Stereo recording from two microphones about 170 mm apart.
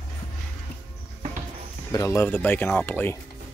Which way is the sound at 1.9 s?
15° left (ahead or behind).